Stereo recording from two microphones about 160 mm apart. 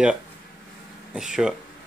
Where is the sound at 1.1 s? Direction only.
5° right (ahead or behind).